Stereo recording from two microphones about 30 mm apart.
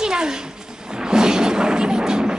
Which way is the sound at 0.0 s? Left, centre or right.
Right.